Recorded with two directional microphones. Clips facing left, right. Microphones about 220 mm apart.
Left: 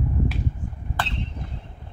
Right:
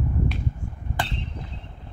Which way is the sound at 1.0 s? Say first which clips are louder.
Even; 15° right (ahead or behind).